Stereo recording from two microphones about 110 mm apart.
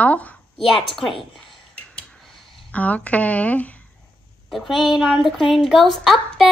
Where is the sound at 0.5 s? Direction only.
Centre (ahead or behind).